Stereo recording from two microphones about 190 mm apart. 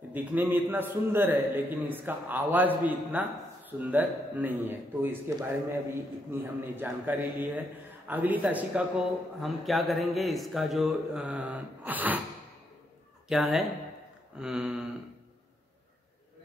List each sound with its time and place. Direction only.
0.1 s a man's voice: 10° right (ahead or behind)
13.3 s a man's voice: centre (ahead or behind)